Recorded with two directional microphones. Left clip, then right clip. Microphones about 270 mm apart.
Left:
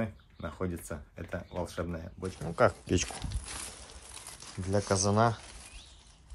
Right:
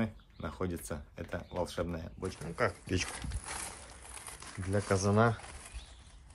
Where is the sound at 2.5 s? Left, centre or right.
Centre.